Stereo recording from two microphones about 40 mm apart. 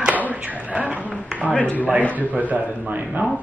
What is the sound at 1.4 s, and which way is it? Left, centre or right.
Speech, left.